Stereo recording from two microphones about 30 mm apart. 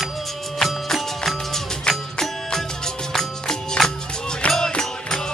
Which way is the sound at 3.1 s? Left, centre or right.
Centre.